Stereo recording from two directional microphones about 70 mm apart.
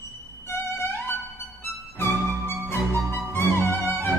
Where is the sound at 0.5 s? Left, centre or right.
Left.